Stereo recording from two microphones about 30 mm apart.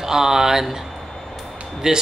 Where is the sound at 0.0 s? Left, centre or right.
Centre.